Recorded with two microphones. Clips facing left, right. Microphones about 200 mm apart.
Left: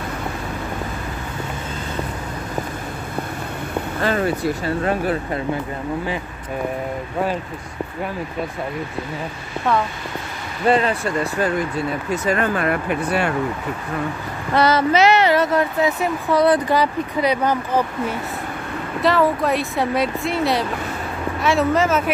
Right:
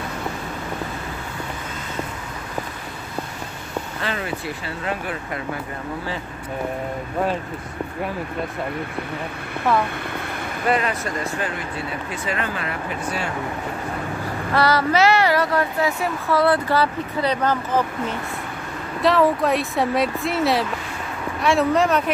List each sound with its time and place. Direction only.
4.0 s speech: 45° left (ahead or behind)
10.7 s speech: 30° left (ahead or behind)
12.1 s speech: 45° left (ahead or behind)
14.5 s speech: 20° left (ahead or behind)
18.9 s speech: centre (ahead or behind)